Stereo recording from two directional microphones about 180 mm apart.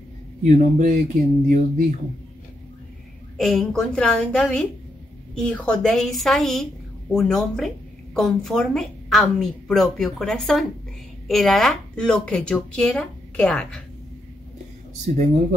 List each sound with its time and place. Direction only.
0.4 s speech: 40° right (ahead or behind)
3.3 s a woman's voice: centre (ahead or behind)